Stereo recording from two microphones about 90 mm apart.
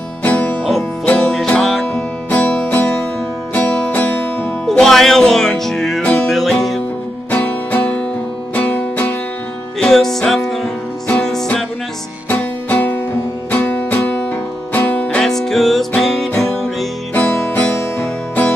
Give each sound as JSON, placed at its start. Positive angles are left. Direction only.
{"t": 0.2, "sound": "music", "side_deg": 15}
{"t": 1.1, "sound": "music", "side_deg": 5}
{"t": 2.3, "sound": "music", "side_deg": 15}
{"t": 4.6, "sound": "music", "side_deg": 5}
{"t": 7.2, "sound": "music", "side_deg": 15}
{"t": 9.8, "sound": "music", "side_deg": 5}
{"t": 12.3, "sound": "music", "side_deg": 15}
{"t": 15.1, "sound": "music", "side_deg": 5}
{"t": 17.1, "sound": "music", "side_deg": 20}